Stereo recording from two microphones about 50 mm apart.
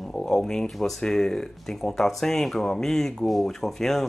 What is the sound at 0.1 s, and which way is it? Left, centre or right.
Speech, centre.